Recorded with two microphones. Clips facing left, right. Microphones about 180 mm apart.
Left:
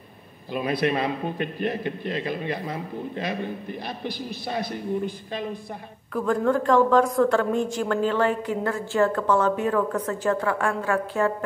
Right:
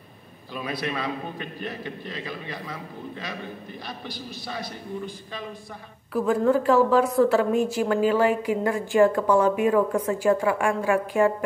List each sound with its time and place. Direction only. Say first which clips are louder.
0.5 s a man's voice: left 6 dB; 50° left (ahead or behind)
6.1 s a woman's voice: right 1 dB; 5° right (ahead or behind)